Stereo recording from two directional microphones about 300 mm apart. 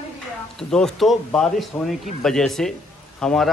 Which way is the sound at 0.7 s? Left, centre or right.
Centre.